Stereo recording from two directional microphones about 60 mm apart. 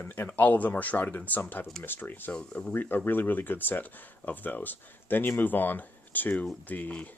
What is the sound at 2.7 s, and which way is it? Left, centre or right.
Speech, left.